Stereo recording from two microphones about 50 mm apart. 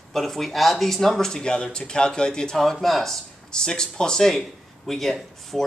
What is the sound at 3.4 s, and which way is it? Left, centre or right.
Speech, centre.